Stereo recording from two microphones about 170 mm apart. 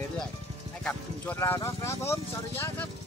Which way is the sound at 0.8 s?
10° left (ahead or behind).